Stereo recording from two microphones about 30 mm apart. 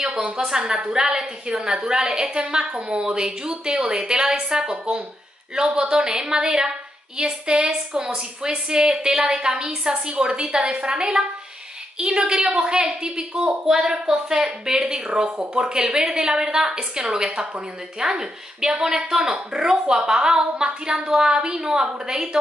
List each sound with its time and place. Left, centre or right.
0.0 s a woman's voice: right
13.7 s a woman's voice: centre